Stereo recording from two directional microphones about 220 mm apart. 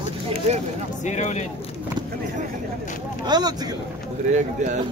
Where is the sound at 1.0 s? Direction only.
30° left (ahead or behind).